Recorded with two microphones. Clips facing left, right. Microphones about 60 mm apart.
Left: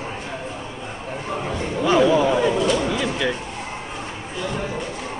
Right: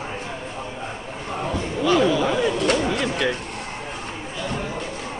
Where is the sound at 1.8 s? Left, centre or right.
Left.